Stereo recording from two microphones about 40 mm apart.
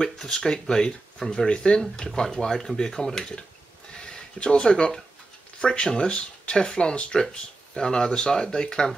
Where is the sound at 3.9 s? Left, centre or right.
Left.